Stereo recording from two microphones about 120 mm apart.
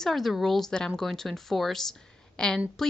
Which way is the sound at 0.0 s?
Centre (ahead or behind).